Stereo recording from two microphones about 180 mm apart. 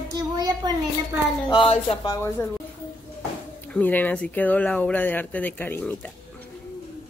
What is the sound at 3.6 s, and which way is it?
Speech, 10° left (ahead or behind).